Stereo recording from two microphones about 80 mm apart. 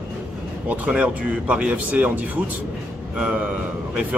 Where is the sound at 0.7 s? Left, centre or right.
Centre.